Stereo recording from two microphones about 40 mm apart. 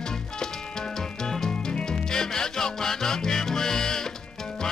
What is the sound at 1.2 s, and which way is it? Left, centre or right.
Music, centre.